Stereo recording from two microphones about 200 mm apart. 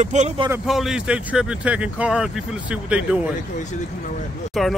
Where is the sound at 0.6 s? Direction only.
Centre (ahead or behind).